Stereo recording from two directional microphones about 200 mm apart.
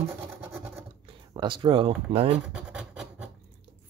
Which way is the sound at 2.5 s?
5° right (ahead or behind).